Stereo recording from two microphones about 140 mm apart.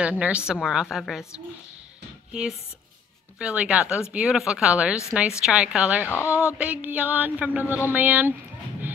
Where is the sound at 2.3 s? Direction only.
5° right (ahead or behind).